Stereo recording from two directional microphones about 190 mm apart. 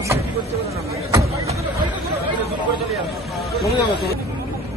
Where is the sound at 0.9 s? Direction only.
15° right (ahead or behind).